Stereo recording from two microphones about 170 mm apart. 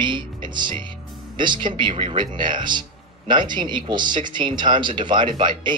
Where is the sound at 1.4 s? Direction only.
25° right (ahead or behind).